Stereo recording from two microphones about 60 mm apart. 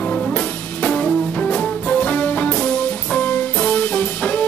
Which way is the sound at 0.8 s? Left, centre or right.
Centre.